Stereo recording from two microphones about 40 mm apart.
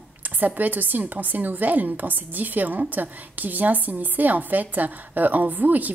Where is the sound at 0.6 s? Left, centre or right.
Right.